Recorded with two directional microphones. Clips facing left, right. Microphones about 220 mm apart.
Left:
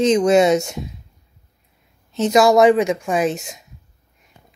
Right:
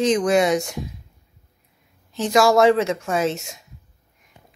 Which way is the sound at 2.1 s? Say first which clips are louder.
Left 3 dB; 20° left (ahead or behind).